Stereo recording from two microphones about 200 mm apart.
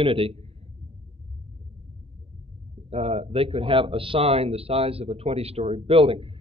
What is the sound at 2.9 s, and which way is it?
A man's voice, 30° right (ahead or behind).